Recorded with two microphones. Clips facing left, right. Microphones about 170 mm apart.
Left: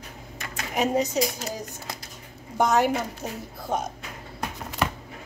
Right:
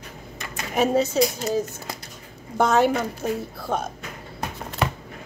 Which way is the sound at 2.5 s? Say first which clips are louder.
Right 3 dB; 15° left (ahead or behind).